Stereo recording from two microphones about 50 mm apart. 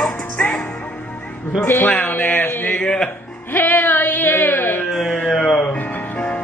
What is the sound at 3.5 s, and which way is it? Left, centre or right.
Music, left.